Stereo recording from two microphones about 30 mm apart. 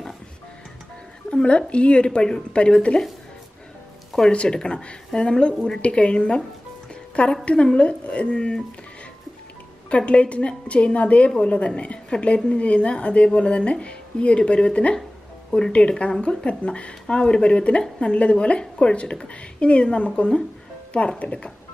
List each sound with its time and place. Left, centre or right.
1.3 s a woman's voice: left
2.1 s speech: left
2.5 s a woman's voice: left
4.3 s a woman's voice: left
7.4 s a woman's voice: left
9.8 s a woman's voice: left
16.0 s a woman's voice: left